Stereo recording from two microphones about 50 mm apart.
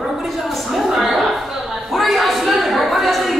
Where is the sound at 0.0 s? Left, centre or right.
Centre.